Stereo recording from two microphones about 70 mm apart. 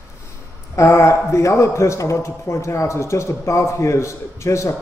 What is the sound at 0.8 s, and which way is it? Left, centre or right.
A man's voice, left.